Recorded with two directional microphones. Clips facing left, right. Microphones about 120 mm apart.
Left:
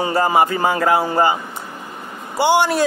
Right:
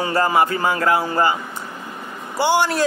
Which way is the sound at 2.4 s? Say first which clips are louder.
Left 2 dB; 15° left (ahead or behind).